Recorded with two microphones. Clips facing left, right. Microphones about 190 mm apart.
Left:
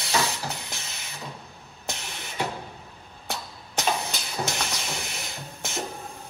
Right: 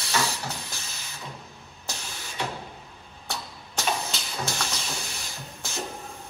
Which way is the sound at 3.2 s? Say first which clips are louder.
Left 1 dB; 15° left (ahead or behind).